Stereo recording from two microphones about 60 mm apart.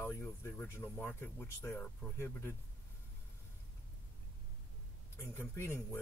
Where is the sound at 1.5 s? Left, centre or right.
Left.